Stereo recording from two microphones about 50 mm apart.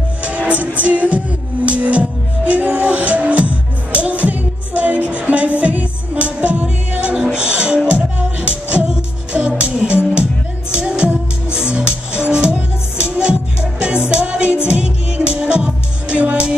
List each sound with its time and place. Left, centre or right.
0.2 s music: right
7.2 s music: centre